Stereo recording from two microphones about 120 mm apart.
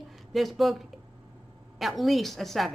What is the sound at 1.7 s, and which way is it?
A woman's voice, centre (ahead or behind).